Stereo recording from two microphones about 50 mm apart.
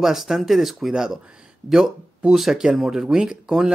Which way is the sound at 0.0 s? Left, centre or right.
Centre.